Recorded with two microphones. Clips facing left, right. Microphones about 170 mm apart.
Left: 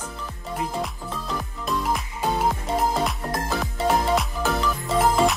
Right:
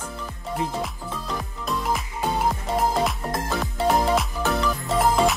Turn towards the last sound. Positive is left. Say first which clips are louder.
# even
turn(degrees=0)  # may be behind; listen again after turning